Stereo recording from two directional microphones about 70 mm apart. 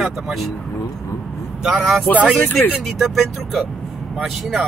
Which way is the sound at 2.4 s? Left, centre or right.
Left.